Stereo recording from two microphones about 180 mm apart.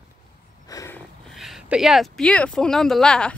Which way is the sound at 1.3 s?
Centre (ahead or behind).